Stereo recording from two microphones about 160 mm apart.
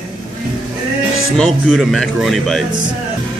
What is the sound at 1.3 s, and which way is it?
Speech, centre (ahead or behind).